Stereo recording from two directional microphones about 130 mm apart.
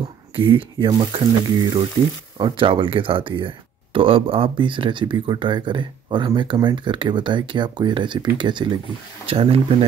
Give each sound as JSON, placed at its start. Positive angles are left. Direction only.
{"t": 0.4, "sound": "speech", "side_deg": -40}
{"t": 9.3, "sound": "speech", "side_deg": -45}